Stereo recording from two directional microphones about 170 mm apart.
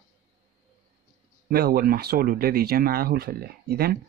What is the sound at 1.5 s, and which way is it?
Speech, 65° right (ahead or behind).